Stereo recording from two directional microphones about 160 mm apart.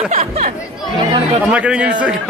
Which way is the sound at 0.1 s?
45° right (ahead or behind).